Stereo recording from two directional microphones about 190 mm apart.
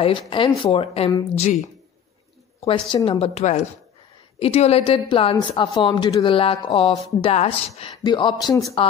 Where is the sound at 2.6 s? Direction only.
30° left (ahead or behind).